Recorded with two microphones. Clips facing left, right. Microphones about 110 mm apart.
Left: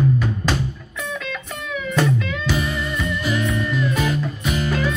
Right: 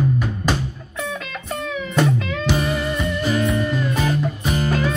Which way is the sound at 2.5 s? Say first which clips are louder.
Right 3 dB; 35° right (ahead or behind).